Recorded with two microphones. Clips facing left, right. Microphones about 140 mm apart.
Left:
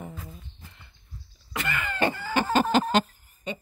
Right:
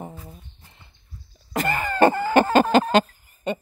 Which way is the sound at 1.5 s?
40° right (ahead or behind).